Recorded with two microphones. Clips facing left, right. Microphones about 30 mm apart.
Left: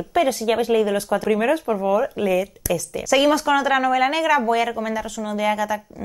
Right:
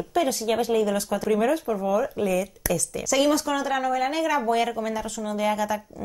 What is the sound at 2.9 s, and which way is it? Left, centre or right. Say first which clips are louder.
Speech: left 5 dB; left.